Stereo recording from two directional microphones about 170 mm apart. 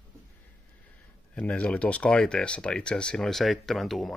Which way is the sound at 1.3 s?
5° left (ahead or behind).